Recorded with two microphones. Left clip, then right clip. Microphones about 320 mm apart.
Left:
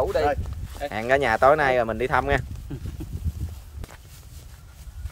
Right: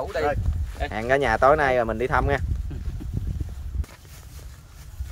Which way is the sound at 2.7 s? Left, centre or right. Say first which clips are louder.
Left 7 dB; left.